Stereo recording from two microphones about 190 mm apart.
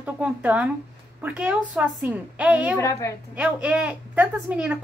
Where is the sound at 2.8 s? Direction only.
15° left (ahead or behind).